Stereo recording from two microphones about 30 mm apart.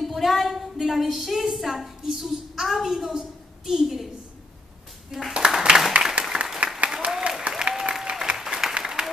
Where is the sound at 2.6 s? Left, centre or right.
Centre.